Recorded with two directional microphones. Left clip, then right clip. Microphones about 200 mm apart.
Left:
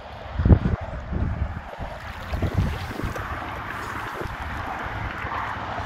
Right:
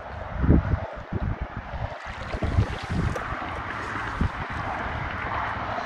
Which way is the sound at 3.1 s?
50° right (ahead or behind).